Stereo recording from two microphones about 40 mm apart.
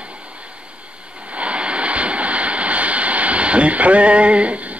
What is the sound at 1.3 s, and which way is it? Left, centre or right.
Vehicle, right.